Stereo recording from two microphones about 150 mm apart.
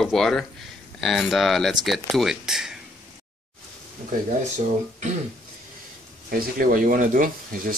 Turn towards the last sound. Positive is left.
turn(degrees=-65)  # may be behind; listen again after turning